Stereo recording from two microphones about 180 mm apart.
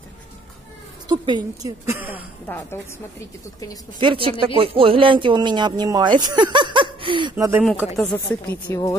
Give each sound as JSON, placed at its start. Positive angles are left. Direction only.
{"t": 1.0, "sound": "speech", "side_deg": -25}
{"t": 1.9, "sound": "speech", "side_deg": -10}
{"t": 2.4, "sound": "speech", "side_deg": 10}
{"t": 4.0, "sound": "speech", "side_deg": -30}
{"t": 7.6, "sound": "speech", "side_deg": 10}